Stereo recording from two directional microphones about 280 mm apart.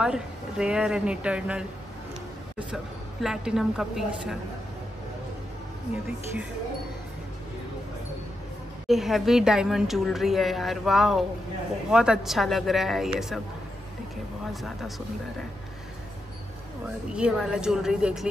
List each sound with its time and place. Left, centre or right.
0.0 s a woman's voice: centre
2.7 s a woman's voice: centre
8.8 s a woman's voice: centre
14.5 s a woman's voice: centre
17.1 s a woman's voice: centre